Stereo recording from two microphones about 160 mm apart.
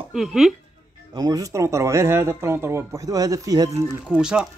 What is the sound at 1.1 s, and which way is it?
Speech, 20° right (ahead or behind).